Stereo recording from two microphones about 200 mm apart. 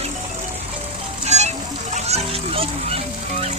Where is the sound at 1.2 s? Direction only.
35° right (ahead or behind).